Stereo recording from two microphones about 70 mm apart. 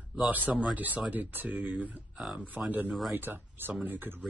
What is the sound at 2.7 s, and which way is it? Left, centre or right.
Speech, right.